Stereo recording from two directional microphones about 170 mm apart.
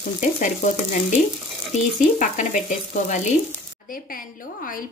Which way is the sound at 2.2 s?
50° left (ahead or behind).